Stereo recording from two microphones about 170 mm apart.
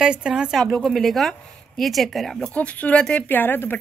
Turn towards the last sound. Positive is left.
turn(degrees=10)  # may be behind; listen again after turning